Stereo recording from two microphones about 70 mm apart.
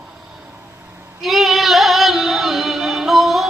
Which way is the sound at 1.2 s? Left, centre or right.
Centre.